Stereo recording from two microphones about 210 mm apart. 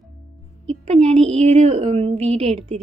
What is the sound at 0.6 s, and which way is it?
A woman's voice, 30° right (ahead or behind).